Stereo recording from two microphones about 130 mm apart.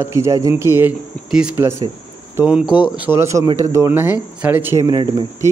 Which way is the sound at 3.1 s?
20° right (ahead or behind).